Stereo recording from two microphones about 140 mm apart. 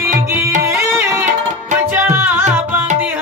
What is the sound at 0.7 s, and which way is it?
Music, 15° right (ahead or behind).